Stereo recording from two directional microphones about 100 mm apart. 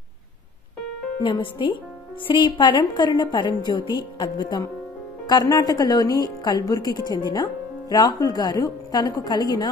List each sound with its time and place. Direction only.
1.2 s a woman's voice: 60° left (ahead or behind)